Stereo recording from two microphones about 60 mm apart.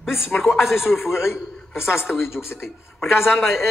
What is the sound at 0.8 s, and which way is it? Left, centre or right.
Speech, left.